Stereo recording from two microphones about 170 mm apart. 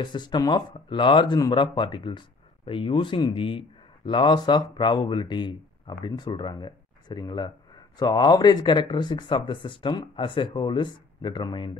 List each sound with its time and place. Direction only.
0.0 s speech: 25° left (ahead or behind)